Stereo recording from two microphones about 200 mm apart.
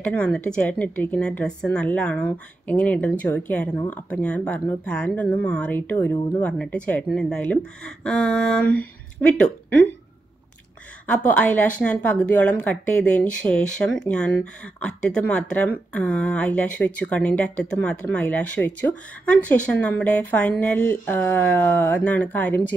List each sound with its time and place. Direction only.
0.0 s a woman's voice: 5° left (ahead or behind)
11.1 s a woman's voice: 5° left (ahead or behind)